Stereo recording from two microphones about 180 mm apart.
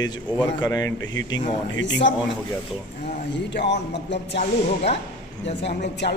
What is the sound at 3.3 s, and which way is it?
A woman's voice, 70° left (ahead or behind).